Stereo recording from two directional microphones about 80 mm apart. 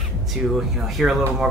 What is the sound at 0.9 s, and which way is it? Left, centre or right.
Speech, centre.